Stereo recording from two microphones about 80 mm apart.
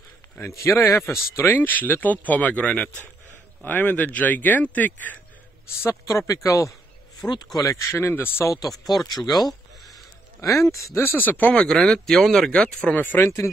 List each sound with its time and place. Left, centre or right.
0.6 s speech: left
5.8 s speech: left
7.2 s speech: left
7.5 s speech: left
8.5 s speech: left
9.5 s a sound: centre
10.7 s speech: left; by 13.0 s centre
13.2 s speech: left